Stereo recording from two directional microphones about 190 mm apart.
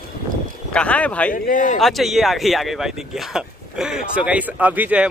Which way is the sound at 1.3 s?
45° left (ahead or behind).